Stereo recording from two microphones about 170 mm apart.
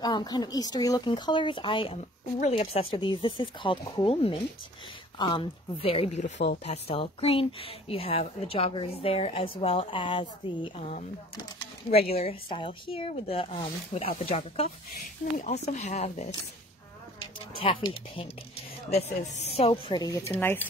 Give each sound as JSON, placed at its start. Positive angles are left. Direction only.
{"t": 0.0, "sound": "a woman's voice", "side_deg": 25}
{"t": 6.3, "sound": "speech", "side_deg": 75}
{"t": 6.6, "sound": "a woman's voice", "side_deg": 35}
{"t": 11.9, "sound": "a woman's voice", "side_deg": 35}
{"t": 17.2, "sound": "a woman's voice", "side_deg": 30}